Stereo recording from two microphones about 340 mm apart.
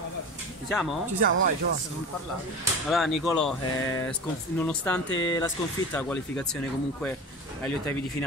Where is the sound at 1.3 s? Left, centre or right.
Right.